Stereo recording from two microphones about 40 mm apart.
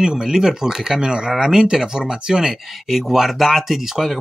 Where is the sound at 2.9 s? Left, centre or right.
Centre.